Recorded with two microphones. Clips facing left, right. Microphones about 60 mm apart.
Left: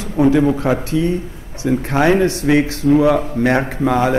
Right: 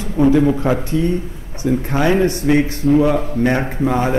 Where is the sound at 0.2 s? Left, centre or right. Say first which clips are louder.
Even; centre.